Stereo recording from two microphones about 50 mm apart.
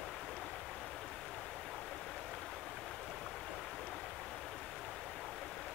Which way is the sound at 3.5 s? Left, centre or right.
Centre.